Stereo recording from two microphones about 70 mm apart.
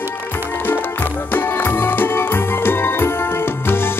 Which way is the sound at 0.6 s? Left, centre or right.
Left.